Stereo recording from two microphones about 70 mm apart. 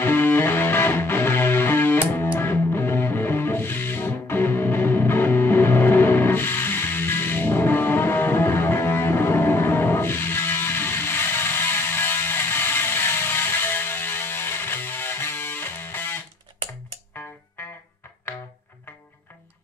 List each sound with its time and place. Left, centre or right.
0.0 s music: left